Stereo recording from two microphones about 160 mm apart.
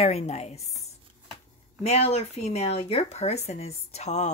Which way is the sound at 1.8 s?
40° left (ahead or behind).